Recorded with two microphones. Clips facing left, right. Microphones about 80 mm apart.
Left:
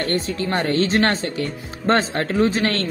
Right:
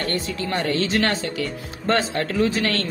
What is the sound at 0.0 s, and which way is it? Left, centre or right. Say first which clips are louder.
Speech: left 3 dB; left.